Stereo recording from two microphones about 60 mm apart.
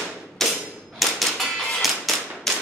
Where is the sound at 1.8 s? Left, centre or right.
Centre.